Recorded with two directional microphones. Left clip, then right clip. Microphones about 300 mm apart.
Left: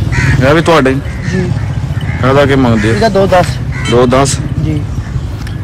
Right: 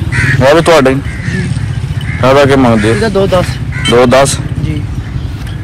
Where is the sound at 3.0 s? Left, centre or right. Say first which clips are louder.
Left 6 dB; left.